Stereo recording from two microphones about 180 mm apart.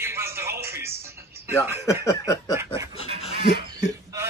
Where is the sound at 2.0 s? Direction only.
20° left (ahead or behind).